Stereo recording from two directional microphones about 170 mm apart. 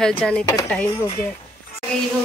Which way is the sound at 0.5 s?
15° left (ahead or behind).